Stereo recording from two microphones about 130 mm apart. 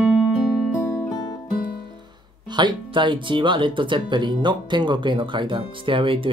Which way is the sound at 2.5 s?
35° right (ahead or behind).